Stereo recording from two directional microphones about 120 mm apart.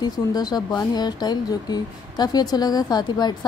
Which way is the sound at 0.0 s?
35° left (ahead or behind).